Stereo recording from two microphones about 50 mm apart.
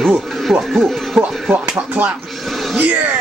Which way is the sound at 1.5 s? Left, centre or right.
Right.